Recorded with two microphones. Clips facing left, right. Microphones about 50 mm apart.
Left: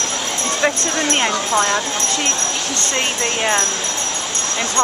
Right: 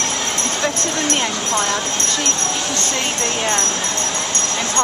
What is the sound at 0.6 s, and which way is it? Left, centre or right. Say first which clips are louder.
Speech: left 4 dB; left.